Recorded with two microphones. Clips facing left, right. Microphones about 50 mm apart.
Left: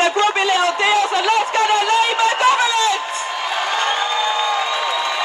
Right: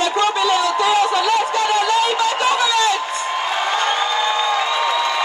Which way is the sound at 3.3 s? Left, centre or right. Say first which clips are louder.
Right 1 dB; right.